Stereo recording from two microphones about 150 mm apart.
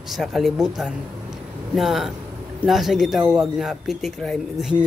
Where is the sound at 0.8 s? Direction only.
5° right (ahead or behind).